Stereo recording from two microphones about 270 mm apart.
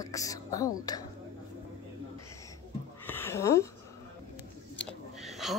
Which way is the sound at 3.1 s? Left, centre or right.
Centre.